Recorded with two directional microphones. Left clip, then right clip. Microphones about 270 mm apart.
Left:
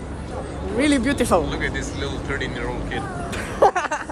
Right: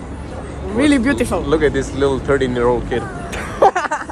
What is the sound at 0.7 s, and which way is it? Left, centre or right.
Speech, centre.